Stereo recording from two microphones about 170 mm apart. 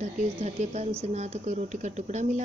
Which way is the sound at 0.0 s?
40° right (ahead or behind).